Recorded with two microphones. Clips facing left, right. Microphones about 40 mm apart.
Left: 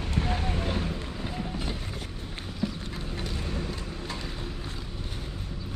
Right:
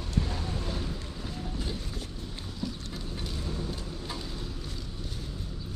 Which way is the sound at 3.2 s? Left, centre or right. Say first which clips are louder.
Left 2 dB; left.